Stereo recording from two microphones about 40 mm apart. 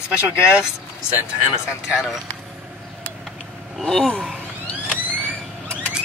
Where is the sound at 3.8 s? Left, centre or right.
Centre.